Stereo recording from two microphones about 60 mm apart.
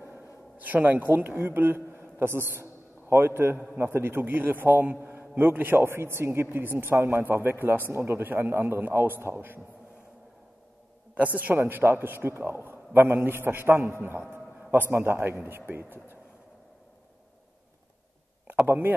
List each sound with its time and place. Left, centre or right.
0.0 s a sound: right
3.7 s a man's voice: right
11.3 s a man's voice: right
11.6 s a man's voice: right
18.7 s a man's voice: right